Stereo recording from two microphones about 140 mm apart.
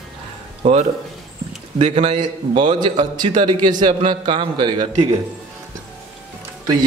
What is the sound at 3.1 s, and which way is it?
A man's voice, 30° right (ahead or behind).